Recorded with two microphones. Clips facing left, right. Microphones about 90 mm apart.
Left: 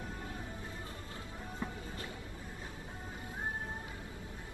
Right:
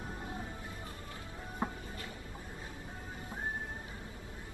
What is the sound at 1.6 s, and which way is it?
Music, 45° right (ahead or behind).